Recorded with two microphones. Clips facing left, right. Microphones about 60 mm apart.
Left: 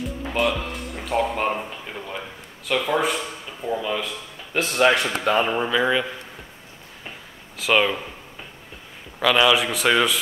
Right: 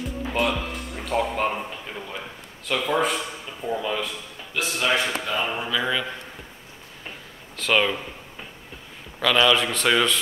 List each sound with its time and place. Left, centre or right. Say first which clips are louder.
0.0 s speech: left 1 dB; centre
4.7 s speech: left 5 dB; left
5.5 s speech: left 5 dB; left
7.5 s speech: left 2 dB; centre
9.2 s a man's voice: left 2 dB; centre